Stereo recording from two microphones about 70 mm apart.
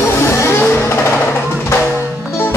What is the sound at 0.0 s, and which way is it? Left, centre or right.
Music, left.